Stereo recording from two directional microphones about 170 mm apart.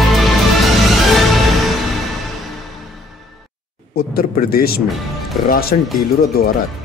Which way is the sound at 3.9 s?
60° left (ahead or behind).